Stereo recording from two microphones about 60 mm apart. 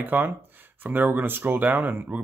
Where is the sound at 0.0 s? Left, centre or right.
Right.